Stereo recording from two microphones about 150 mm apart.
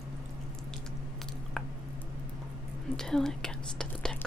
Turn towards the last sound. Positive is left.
turn(degrees=5)  # may be behind; listen again after turning